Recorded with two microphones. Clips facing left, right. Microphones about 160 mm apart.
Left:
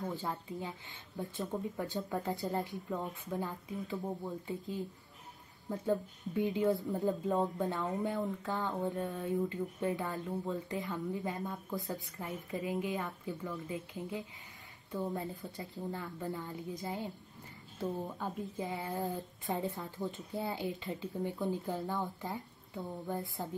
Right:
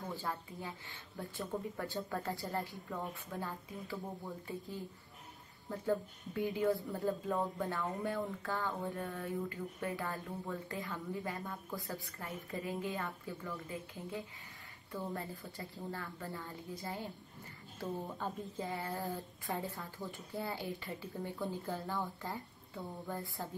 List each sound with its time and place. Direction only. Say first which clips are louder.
0.1 s speech: left 3 dB; 20° left (ahead or behind)